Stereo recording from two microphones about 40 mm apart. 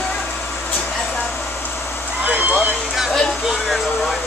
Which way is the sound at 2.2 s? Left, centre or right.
Right.